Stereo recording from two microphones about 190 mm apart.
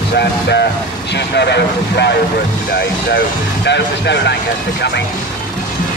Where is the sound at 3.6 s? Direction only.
65° left (ahead or behind).